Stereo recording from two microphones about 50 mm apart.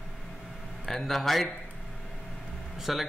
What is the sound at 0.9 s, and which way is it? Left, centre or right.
Speech, centre.